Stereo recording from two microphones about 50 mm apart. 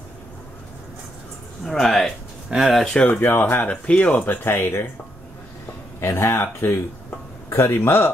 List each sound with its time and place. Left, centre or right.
1.6 s speech: centre
2.5 s speech: centre
3.0 s speech: left
3.7 s speech: left
4.5 s speech: left
5.9 s speech: left